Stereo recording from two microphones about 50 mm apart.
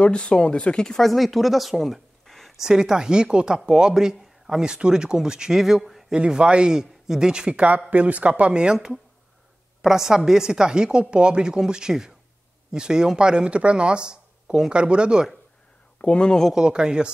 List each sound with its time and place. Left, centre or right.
0.0 s speech: left
1.1 s speech: centre
2.6 s speech: centre
6.1 s speech: centre
9.8 s speech: centre
16.0 s speech: left
16.5 s speech: centre